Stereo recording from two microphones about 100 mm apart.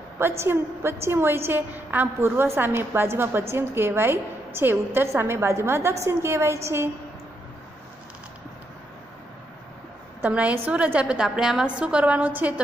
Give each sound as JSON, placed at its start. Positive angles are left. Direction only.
{"t": 0.2, "sound": "a woman's voice", "side_deg": -25}
{"t": 10.2, "sound": "a woman's voice", "side_deg": -15}